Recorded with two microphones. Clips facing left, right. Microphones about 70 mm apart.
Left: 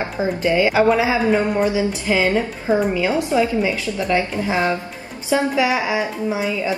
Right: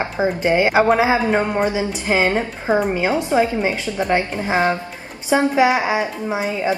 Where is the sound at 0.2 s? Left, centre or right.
Right.